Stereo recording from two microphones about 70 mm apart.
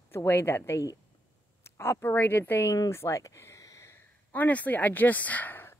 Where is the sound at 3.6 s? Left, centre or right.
Left.